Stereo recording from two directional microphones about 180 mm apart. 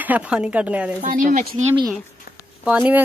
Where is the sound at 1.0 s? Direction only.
50° right (ahead or behind).